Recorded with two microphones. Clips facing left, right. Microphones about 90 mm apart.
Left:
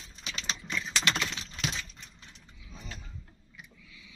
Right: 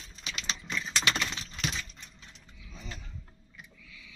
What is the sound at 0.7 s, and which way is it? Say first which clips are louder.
Typing: even; 5° right (ahead or behind).